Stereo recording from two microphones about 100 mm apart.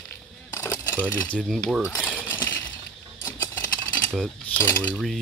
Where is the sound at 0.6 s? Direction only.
20° left (ahead or behind).